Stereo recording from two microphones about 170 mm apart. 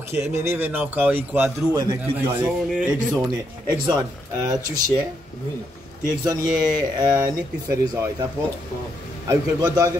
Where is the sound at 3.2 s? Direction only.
25° right (ahead or behind).